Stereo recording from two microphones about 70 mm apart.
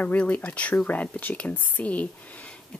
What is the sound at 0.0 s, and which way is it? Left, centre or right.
Speech, left.